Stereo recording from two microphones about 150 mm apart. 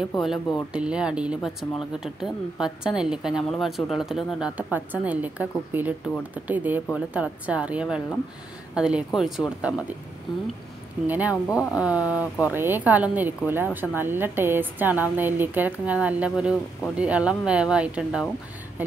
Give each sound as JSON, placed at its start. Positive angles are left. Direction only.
{"t": 0.2, "sound": "speech", "side_deg": 0}
{"t": 11.1, "sound": "speech", "side_deg": -10}
{"t": 11.4, "sound": "speech", "side_deg": 20}
{"t": 11.8, "sound": "speech", "side_deg": -10}